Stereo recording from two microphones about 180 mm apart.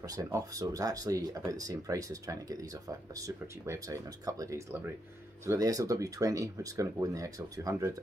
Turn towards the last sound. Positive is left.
turn(degrees=-15)  # may be behind; listen again after turning